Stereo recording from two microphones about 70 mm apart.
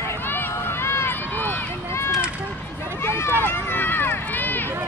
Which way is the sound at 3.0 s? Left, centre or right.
Left.